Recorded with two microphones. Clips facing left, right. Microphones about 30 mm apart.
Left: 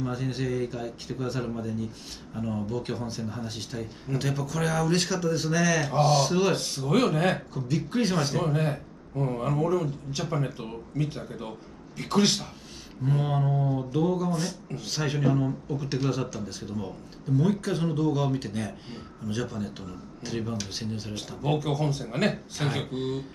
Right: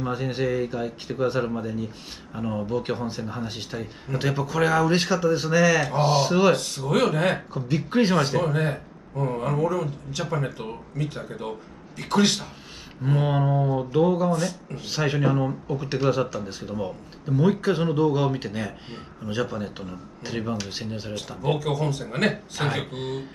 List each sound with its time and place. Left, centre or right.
0.0 s a man's voice: right
12.0 s a man's voice: centre
13.0 s a man's voice: right
21.7 s a man's voice: centre
22.0 s a man's voice: centre